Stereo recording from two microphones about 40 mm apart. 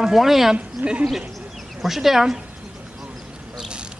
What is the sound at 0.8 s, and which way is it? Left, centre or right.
Speech, right.